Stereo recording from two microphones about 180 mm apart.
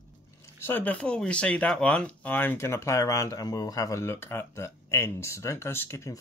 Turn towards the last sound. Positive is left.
turn(degrees=15)  # may be behind; listen again after turning